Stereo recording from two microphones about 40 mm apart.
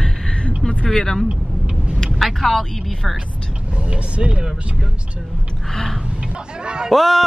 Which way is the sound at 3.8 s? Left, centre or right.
Right.